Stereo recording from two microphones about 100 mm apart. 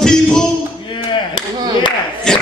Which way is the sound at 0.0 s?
5° left (ahead or behind).